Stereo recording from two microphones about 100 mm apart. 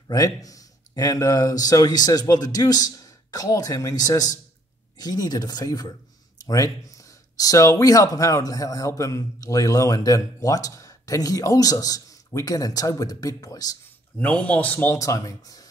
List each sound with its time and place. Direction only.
0.1 s speech: 35° left (ahead or behind)
14.1 s speech: 15° left (ahead or behind)
15.0 s speech: 35° left (ahead or behind)